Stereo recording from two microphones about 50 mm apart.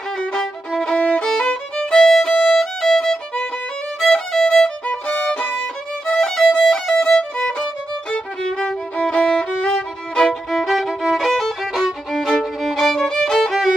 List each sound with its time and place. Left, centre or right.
0.2 s violin: centre
0.9 s violin: left
1.2 s violin: centre
1.5 s music: centre
2.1 s violin: centre
4.0 s music: centre
4.8 s violin: left
6.0 s music: centre
6.7 s violin: centre
8.1 s music: centre
9.2 s violin: centre
10.5 s music: centre